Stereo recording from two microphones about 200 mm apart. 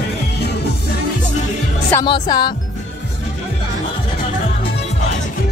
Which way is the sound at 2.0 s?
20° left (ahead or behind).